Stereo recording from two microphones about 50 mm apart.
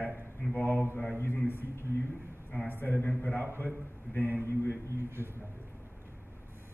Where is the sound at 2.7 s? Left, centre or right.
Left.